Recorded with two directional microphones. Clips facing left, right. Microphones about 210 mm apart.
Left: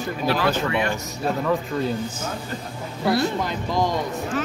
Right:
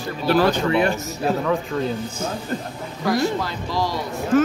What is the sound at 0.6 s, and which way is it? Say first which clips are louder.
Speech: right 5 dB; 35° right (ahead or behind).